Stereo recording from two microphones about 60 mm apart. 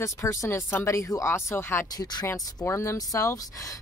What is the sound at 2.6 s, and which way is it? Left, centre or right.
Speech, left.